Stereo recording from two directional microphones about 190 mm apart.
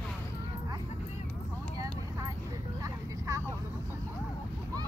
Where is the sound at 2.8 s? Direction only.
15° right (ahead or behind).